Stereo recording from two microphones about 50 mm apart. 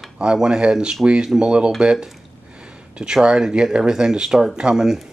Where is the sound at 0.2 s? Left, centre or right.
Centre.